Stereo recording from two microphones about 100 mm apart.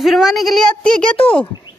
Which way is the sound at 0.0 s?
Centre (ahead or behind).